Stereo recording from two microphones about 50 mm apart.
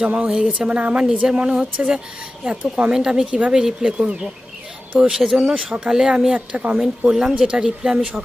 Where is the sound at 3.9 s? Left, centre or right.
Right.